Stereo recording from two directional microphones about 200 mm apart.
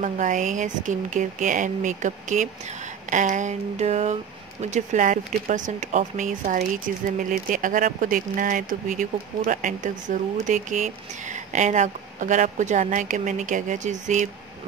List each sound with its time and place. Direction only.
0.0 s speech: 40° right (ahead or behind)